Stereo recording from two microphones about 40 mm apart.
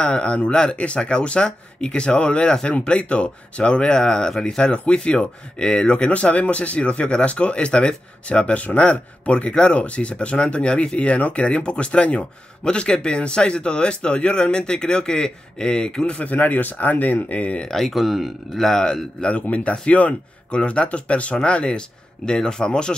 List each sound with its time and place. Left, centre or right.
0.0 s a man's voice: left
16.1 s speech: left
17.6 s a man's voice: centre
17.9 s speech: centre
18.6 s a man's voice: centre
19.5 s a man's voice: left